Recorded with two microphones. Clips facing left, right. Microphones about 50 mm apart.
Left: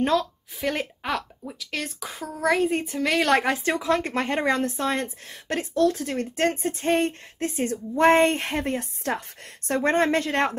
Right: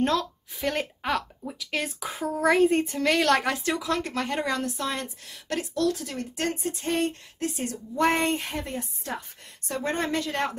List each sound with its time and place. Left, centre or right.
0.0 s a woman's voice: centre
3.3 s a woman's voice: left
9.8 s a woman's voice: left